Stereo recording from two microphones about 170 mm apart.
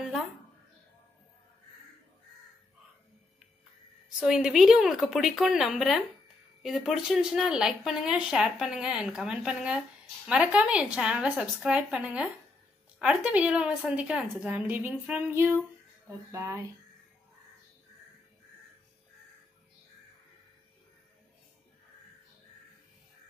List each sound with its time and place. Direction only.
4.2 s a woman's voice: 5° right (ahead or behind)